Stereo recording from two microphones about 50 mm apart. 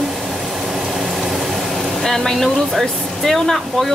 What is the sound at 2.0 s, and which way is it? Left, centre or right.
Speech, centre.